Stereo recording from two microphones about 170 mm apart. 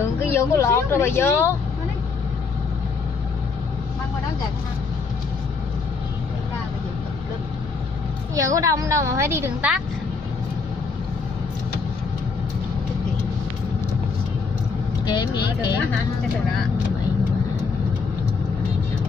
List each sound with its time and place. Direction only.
0.2 s speech: 15° left (ahead or behind)
8.4 s a woman's voice: 20° right (ahead or behind)
15.0 s speech: 25° left (ahead or behind)